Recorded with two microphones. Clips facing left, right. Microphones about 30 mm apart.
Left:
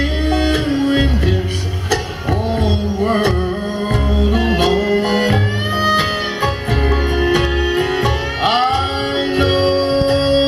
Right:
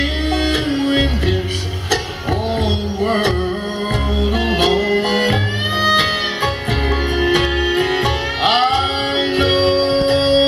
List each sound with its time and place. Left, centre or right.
0.3 s music: centre
3.0 s music: right